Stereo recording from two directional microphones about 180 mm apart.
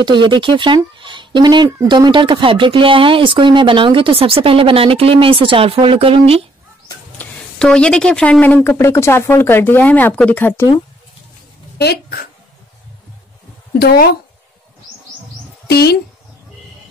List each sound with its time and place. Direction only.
0.0 s speech: 25° right (ahead or behind)
7.2 s speech: 5° left (ahead or behind)
11.8 s a woman's voice: 60° left (ahead or behind)
13.7 s a woman's voice: 60° left (ahead or behind)
15.6 s speech: 60° left (ahead or behind)